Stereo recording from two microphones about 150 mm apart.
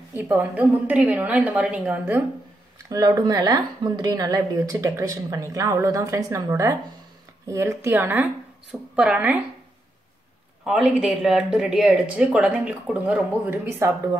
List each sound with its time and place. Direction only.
0.1 s speech: 15° right (ahead or behind)
2.9 s speech: 25° right (ahead or behind)
10.6 s speech: 5° right (ahead or behind)